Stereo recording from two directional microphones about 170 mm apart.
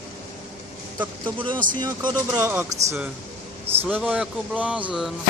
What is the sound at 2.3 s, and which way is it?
Speech, 10° right (ahead or behind).